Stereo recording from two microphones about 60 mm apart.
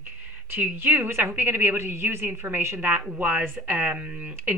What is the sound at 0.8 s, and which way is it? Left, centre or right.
A woman's voice, right.